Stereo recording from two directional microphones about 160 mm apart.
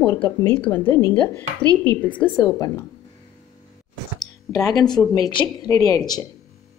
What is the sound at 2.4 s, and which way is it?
Speech, 20° left (ahead or behind).